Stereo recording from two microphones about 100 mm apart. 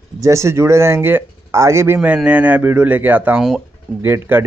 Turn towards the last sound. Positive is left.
turn(degrees=-20)  # may be behind; listen again after turning